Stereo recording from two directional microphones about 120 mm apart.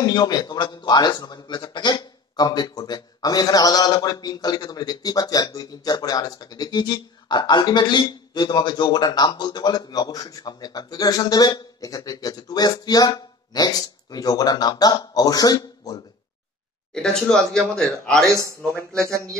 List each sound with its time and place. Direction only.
0.0 s a man's voice: 35° left (ahead or behind)
16.9 s speech: 5° left (ahead or behind)
18.2 s speech: 25° right (ahead or behind)